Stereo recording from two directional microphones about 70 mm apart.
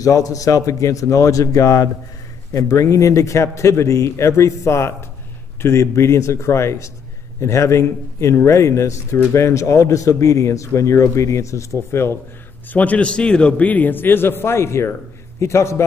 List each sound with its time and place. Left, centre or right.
0.0 s speech: left
12.6 s a man's voice: left